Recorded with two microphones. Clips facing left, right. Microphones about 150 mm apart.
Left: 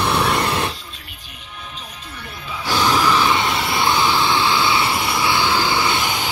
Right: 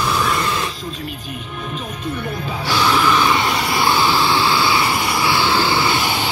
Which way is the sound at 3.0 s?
25° left (ahead or behind).